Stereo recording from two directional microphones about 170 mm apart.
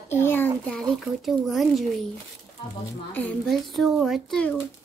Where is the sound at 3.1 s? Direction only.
10° left (ahead or behind).